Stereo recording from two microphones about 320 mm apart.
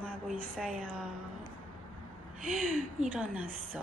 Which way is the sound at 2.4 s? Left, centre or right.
Right.